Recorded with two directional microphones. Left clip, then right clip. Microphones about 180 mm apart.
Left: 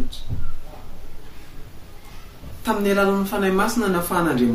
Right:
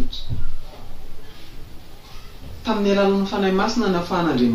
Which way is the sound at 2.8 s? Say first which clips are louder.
Right 1 dB; 5° left (ahead or behind).